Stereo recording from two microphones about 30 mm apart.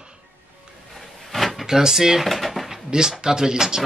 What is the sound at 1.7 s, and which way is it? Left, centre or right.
Speech, centre.